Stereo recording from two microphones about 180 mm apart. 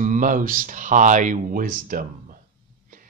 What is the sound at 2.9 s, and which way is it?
Music, 50° right (ahead or behind).